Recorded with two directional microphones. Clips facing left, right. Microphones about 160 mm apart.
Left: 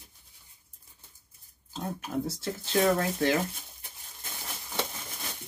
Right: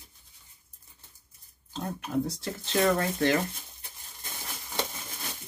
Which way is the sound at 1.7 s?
5° left (ahead or behind).